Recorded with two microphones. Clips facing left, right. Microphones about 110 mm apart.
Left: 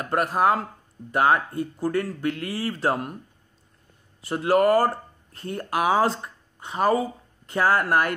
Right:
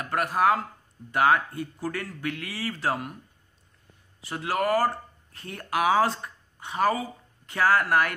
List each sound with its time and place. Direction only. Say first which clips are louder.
0.0 s speech: left 2 dB; 30° left (ahead or behind)
4.3 s speech: left 7 dB; 35° left (ahead or behind)
6.9 s a sound: left 5 dB; 40° left (ahead or behind)
7.5 s speech: left 1 dB; 30° left (ahead or behind)